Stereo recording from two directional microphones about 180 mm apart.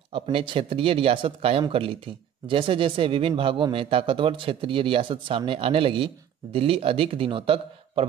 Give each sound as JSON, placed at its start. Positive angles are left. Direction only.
{"t": 0.1, "sound": "a man's voice", "side_deg": -30}